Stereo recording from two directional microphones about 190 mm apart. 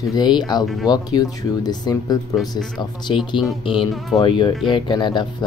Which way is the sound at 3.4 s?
25° left (ahead or behind).